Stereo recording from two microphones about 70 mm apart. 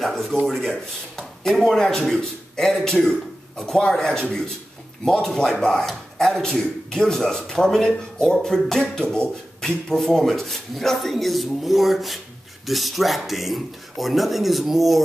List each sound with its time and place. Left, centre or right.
0.0 s speech: centre